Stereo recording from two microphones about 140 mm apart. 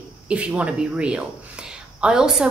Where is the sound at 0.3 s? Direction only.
10° right (ahead or behind).